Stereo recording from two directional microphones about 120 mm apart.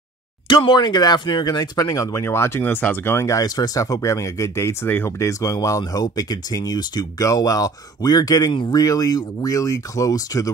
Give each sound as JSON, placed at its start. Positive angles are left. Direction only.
{"t": 0.5, "sound": "speech", "side_deg": 40}